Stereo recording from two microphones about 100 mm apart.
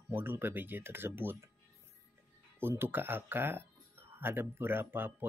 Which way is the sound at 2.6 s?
20° right (ahead or behind).